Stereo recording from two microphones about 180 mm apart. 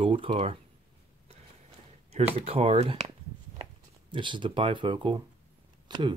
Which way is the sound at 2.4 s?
35° right (ahead or behind).